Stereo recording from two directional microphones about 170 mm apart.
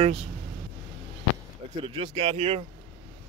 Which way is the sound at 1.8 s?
30° right (ahead or behind).